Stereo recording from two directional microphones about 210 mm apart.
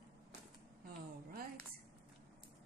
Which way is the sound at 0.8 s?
45° right (ahead or behind).